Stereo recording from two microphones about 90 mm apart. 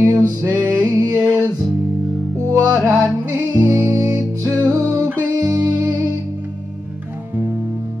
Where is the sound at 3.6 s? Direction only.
25° right (ahead or behind).